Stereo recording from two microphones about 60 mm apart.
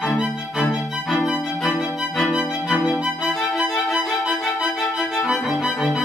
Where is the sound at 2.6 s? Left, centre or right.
Centre.